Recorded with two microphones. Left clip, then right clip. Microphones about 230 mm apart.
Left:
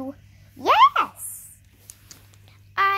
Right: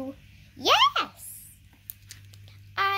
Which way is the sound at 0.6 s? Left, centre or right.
Centre.